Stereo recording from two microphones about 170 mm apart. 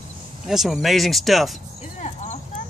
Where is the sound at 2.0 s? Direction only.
40° left (ahead or behind).